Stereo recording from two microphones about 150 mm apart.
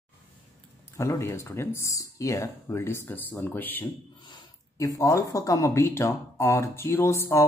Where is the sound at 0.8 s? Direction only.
20° left (ahead or behind).